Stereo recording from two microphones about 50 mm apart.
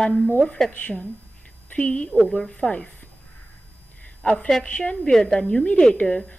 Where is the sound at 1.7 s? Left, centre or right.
Left.